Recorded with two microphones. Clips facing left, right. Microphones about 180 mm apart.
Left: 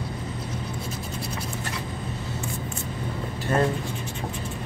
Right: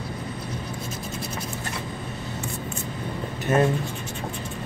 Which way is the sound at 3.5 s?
25° right (ahead or behind).